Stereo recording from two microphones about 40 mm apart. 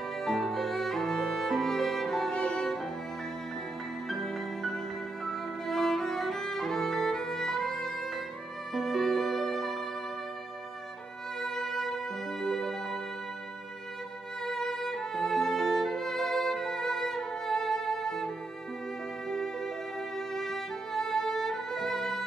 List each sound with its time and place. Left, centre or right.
0.2 s music: centre
2.3 s music: left
4.1 s music: centre
8.7 s violin: centre
11.4 s music: centre
14.4 s music: centre